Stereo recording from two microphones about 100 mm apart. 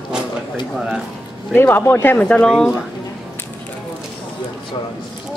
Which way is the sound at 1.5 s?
20° left (ahead or behind).